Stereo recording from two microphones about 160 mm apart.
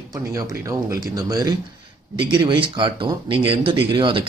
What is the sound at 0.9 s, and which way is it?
Speech, 25° right (ahead or behind).